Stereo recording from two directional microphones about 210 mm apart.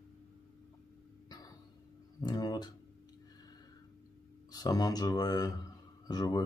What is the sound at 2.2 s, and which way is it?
Speech, 20° left (ahead or behind).